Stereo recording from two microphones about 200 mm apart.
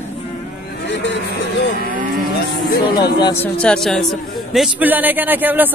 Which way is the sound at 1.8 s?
45° right (ahead or behind).